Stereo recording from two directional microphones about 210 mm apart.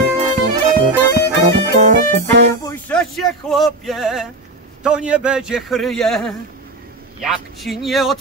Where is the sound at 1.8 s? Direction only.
35° right (ahead or behind).